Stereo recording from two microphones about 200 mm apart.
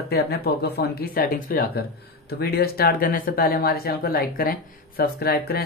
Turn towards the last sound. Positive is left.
turn(degrees=50)  # may be behind; listen again after turning